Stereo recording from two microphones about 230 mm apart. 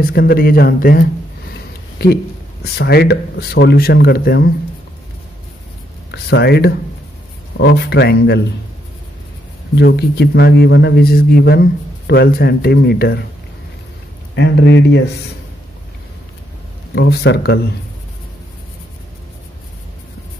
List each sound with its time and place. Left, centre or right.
0.0 s speech: left
1.5 s a sound: left
2.6 s a man's voice: left
6.1 s a man's voice: left
9.8 s a man's voice: left
14.3 s a man's voice: left
16.9 s a man's voice: left